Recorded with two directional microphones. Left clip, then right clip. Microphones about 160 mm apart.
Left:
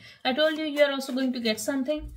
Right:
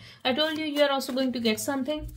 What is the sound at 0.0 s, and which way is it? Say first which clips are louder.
A woman's voice: left 2 dB; 40° right (ahead or behind).